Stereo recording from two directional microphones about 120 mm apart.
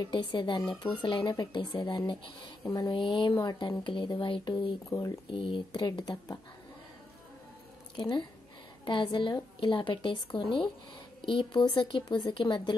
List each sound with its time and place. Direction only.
0.0 s speech: 40° left (ahead or behind)
4.8 s speech: 25° left (ahead or behind)
5.3 s speech: 45° left (ahead or behind)
7.9 s speech: 40° left (ahead or behind)